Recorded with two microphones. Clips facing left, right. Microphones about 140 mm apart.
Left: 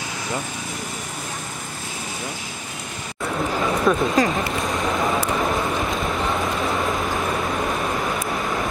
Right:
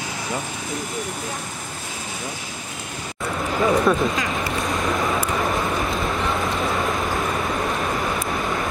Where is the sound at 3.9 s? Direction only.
5° right (ahead or behind).